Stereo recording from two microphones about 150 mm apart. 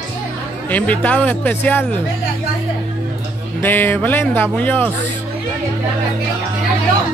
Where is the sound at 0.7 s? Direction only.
10° left (ahead or behind).